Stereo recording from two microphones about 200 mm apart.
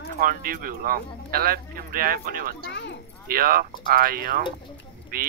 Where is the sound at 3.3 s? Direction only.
45° right (ahead or behind).